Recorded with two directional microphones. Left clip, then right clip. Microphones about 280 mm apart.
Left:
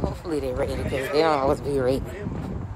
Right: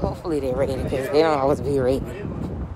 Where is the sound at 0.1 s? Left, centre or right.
Centre.